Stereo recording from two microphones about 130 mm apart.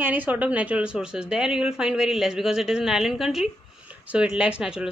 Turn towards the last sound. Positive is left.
turn(degrees=-5)  # may be behind; listen again after turning